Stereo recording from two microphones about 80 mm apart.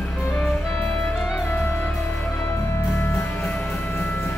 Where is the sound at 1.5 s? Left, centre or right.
Left.